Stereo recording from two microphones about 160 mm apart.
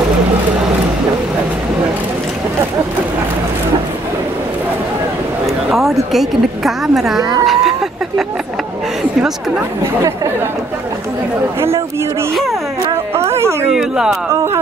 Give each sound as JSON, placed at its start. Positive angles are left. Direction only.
{"t": 5.7, "sound": "a woman's voice", "side_deg": 0}
{"t": 13.4, "sound": "speech", "side_deg": -15}
{"t": 13.7, "sound": "a woman's voice", "side_deg": -5}